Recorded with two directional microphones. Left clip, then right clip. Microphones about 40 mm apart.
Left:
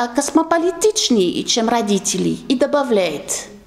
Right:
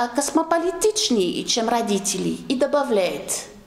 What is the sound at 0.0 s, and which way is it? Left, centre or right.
A woman's voice, left.